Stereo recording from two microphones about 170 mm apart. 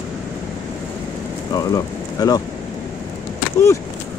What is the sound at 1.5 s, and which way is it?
Speech, 20° left (ahead or behind).